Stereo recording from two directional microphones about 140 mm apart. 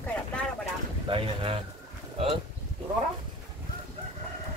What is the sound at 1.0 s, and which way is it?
Speech, 40° right (ahead or behind).